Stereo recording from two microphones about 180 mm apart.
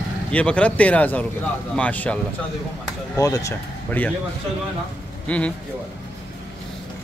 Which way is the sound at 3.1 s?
20° left (ahead or behind).